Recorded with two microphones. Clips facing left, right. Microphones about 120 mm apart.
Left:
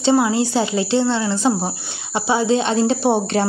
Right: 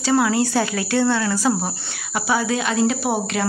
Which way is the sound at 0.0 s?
20° left (ahead or behind).